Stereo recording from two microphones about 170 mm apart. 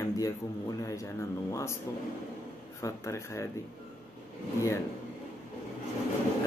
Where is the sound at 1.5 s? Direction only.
15° left (ahead or behind).